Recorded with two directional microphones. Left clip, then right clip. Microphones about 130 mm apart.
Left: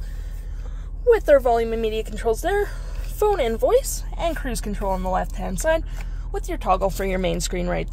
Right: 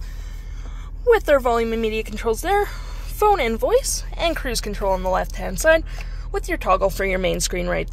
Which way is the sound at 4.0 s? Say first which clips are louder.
Right 3 dB; 5° left (ahead or behind).